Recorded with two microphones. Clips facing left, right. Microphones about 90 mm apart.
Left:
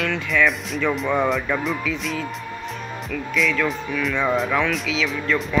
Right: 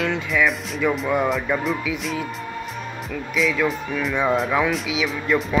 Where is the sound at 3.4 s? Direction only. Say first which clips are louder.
Right 1 dB; centre (ahead or behind).